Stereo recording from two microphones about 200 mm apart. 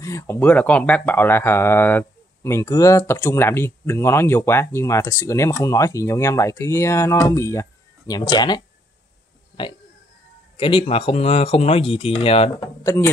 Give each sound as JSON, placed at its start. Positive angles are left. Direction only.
{"t": 0.0, "sound": "speech", "side_deg": 15}
{"t": 10.6, "sound": "speech", "side_deg": 25}
{"t": 12.8, "sound": "speech", "side_deg": 15}